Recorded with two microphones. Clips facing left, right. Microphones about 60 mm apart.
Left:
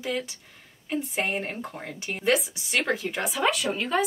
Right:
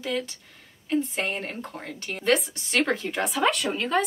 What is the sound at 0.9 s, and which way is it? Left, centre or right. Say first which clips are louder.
Speech: right 2 dB; centre.